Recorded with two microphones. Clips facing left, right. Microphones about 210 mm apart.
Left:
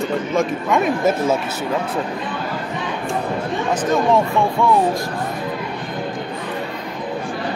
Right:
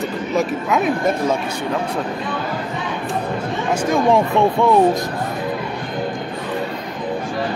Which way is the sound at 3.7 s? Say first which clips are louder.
Right 1 dB; 10° right (ahead or behind).